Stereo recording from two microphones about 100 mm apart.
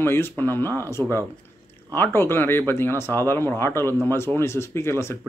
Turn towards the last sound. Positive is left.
turn(degrees=25)  # may be behind; listen again after turning